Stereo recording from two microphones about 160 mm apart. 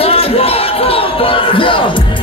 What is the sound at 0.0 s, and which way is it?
Music, 35° left (ahead or behind).